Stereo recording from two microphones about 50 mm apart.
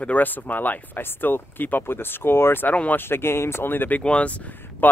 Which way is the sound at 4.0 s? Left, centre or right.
Left.